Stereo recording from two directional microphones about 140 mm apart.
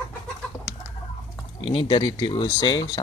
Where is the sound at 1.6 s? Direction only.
40° left (ahead or behind).